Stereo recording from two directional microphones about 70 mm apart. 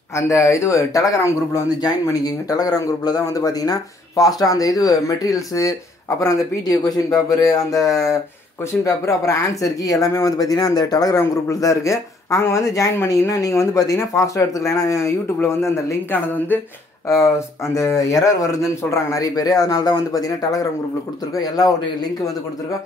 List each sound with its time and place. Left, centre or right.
0.1 s speech: left
1.8 s speech: left
11.1 s speech: left
12.6 s speech: left
17.1 s speech: left